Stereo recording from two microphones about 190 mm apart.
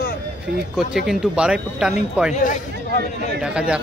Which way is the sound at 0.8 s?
Centre (ahead or behind).